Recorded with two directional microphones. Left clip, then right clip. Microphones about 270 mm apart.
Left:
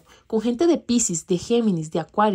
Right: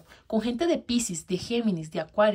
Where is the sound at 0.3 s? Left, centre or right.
Centre.